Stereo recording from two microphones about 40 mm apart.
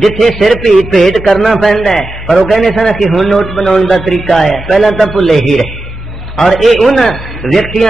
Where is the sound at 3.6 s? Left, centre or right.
Centre.